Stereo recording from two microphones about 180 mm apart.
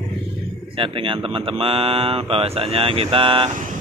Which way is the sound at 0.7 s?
30° right (ahead or behind).